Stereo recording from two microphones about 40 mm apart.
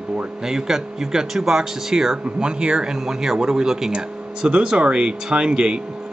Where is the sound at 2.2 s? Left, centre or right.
Right.